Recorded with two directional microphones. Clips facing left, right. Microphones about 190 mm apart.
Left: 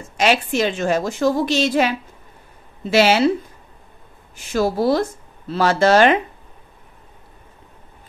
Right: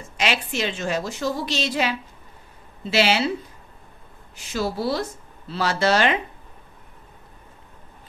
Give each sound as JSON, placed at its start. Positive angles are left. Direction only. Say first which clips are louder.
{"t": 0.2, "sound": "a woman's voice", "louder": "left 7 dB", "side_deg": 45}
{"t": 4.5, "sound": "a woman's voice", "louder": "left 7 dB", "side_deg": 50}